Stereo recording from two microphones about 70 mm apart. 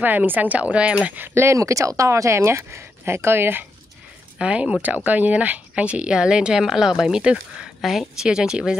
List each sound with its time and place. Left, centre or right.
0.0 s speech: right
1.1 s speech: right
1.6 s speech: right
4.4 s speech: centre
7.8 s speech: centre